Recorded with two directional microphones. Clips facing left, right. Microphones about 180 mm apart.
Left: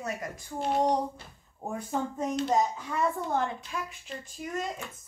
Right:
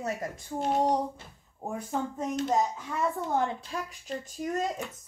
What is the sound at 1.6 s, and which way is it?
Speech, centre (ahead or behind).